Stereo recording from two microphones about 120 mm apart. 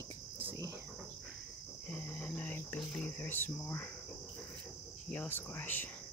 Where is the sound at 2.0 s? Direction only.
15° left (ahead or behind).